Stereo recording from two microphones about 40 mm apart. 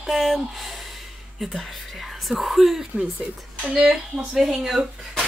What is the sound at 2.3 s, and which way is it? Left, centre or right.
Speech, centre.